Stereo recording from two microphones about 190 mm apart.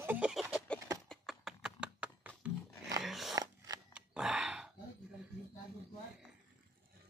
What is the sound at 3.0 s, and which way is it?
Dog, centre (ahead or behind).